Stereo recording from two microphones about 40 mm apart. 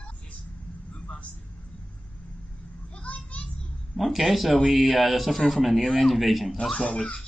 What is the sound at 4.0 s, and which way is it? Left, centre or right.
Speech, centre.